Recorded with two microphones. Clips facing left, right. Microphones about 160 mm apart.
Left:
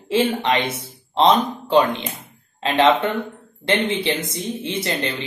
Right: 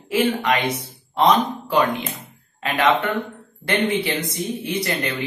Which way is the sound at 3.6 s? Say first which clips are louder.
Left 1 dB; 20° left (ahead or behind).